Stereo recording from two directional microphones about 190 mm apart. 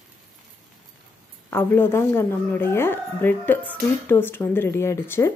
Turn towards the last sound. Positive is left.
turn(degrees=15)  # may be behind; listen again after turning